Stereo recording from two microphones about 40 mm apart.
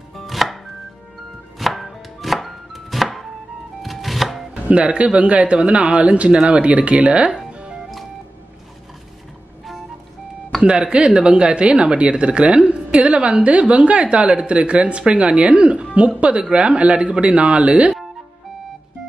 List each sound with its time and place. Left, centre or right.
0.1 s chopping: centre
1.6 s chopping: centre
4.6 s speech: right
7.5 s music: right
10.6 s speech: right